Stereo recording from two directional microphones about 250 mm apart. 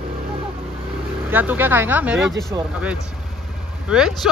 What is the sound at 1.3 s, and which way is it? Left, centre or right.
Speech, centre.